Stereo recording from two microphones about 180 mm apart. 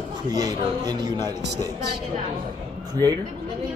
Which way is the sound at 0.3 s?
20° right (ahead or behind).